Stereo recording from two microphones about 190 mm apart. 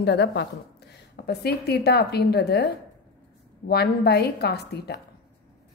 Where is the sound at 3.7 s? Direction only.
55° left (ahead or behind).